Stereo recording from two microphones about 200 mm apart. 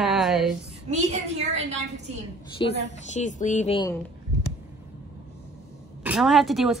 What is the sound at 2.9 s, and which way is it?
Speech, 35° left (ahead or behind).